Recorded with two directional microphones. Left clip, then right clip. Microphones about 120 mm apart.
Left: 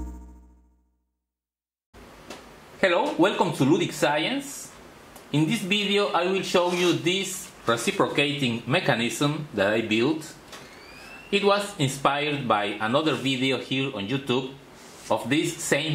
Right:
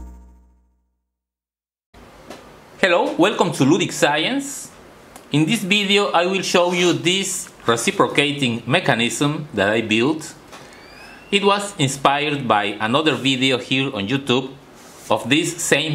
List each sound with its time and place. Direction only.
3.2 s speech: 35° right (ahead or behind)
11.3 s speech: 25° right (ahead or behind)
11.8 s speech: 35° right (ahead or behind)
13.3 s speech: 45° right (ahead or behind)